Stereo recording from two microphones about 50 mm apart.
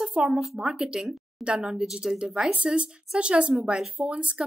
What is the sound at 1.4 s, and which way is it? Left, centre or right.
A woman's voice, centre.